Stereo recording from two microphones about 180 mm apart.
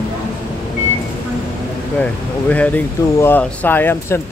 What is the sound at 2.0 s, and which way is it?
Speech, 5° left (ahead or behind).